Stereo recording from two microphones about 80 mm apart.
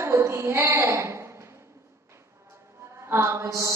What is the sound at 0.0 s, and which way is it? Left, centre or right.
Speech, right.